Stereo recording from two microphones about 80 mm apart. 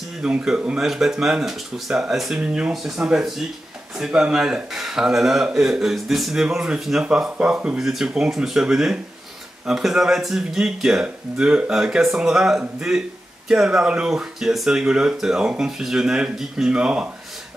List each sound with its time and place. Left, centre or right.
0.2 s speech: centre